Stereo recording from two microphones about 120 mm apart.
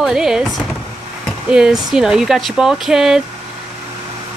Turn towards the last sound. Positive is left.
turn(degrees=-5)  # may be behind; listen again after turning